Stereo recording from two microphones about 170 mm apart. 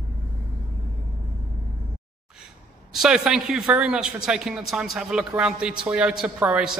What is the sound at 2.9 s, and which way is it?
A man's voice, 5° right (ahead or behind).